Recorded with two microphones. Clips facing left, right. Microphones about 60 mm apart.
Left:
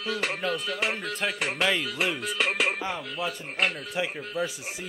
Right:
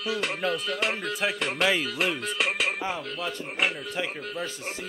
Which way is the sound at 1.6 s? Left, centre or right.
Centre.